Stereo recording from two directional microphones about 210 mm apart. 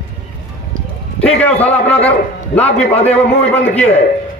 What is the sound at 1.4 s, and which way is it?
Speech, 5° left (ahead or behind).